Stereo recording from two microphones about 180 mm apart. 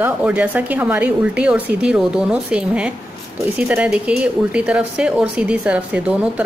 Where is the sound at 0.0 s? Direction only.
10° right (ahead or behind).